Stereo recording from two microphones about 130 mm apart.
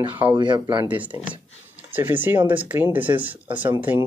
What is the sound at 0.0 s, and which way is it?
Speech, 10° right (ahead or behind).